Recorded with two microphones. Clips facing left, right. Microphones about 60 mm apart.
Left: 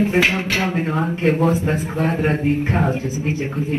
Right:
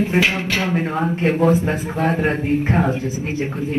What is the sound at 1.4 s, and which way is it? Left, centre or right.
A man's voice, right.